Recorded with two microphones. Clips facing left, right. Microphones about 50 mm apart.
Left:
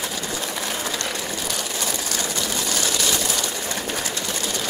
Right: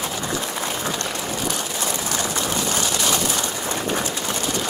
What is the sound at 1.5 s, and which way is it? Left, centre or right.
Vehicle, centre.